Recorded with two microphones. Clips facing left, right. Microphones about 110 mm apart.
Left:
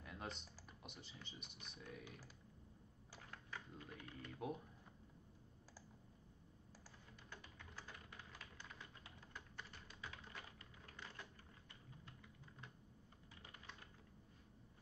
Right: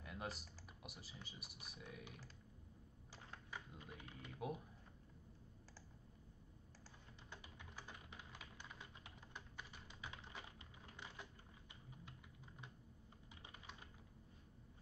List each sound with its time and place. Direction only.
0.0 s typing: 5° right (ahead or behind)
3.2 s typing: 15° right (ahead or behind)
7.2 s typing: 15° right (ahead or behind)